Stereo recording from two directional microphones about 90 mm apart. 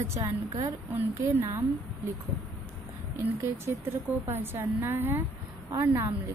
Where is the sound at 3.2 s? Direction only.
25° right (ahead or behind).